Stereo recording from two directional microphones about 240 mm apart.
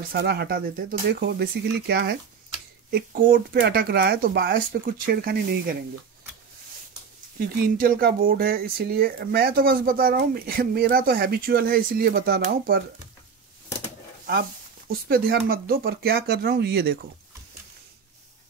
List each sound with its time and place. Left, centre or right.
0.1 s speech: right
7.3 s speech: right
14.9 s speech: right